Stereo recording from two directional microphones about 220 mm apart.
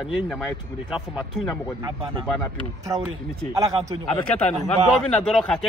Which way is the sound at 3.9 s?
20° right (ahead or behind).